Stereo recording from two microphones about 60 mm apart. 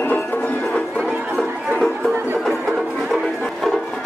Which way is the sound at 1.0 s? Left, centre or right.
Centre.